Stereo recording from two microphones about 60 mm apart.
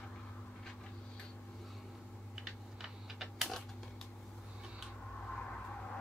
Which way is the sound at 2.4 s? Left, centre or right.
Centre.